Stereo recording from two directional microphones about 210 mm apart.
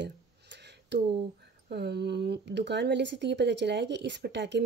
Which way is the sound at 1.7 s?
50° right (ahead or behind).